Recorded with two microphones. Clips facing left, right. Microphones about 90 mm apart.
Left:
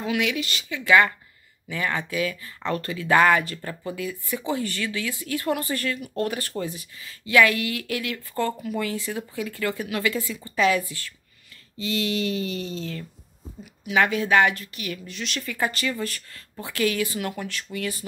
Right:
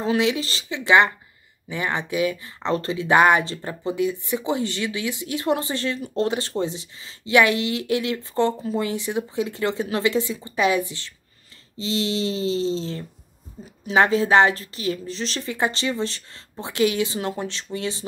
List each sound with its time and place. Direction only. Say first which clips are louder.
0.0 s speech: right 4 dB; 30° right (ahead or behind)